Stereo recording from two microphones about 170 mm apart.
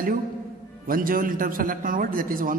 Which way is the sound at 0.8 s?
55° right (ahead or behind).